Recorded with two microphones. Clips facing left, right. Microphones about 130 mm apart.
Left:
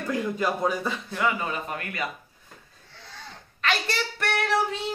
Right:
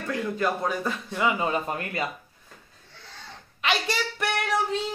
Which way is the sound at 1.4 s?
25° right (ahead or behind).